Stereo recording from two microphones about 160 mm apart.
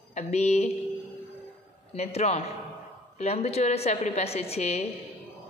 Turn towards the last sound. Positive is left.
turn(degrees=40)  # may be behind; listen again after turning